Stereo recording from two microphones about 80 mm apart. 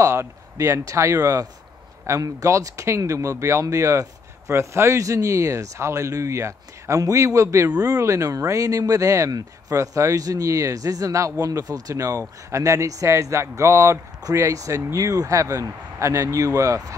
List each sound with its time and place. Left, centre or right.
0.0 s speech: right